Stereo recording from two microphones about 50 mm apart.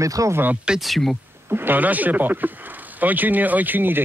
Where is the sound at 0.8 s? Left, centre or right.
Centre.